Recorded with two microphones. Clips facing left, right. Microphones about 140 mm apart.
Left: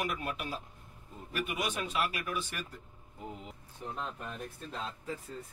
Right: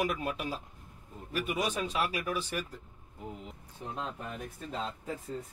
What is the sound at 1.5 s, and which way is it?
Speech, 30° right (ahead or behind).